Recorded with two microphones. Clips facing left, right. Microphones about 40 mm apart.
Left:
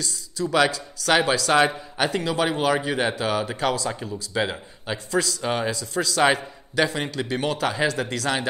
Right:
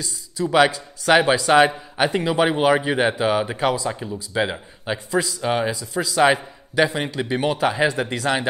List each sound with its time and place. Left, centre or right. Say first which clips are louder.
0.0 s a man's voice: right 2 dB; centre
3.9 s speech: right 2 dB; centre